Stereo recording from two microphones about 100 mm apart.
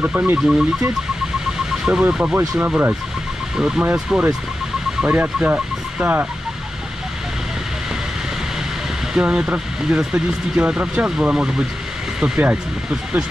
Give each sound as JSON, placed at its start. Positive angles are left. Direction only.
{"t": 0.0, "sound": "speech", "side_deg": -15}
{"t": 1.7, "sound": "speech", "side_deg": -15}
{"t": 9.1, "sound": "speech", "side_deg": -10}